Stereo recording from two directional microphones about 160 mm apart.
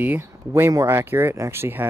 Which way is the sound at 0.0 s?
10° right (ahead or behind).